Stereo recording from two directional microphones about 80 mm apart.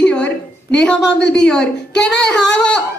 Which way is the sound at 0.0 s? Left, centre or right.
Centre.